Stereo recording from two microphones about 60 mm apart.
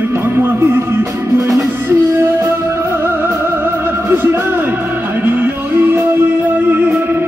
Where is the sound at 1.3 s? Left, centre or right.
Right.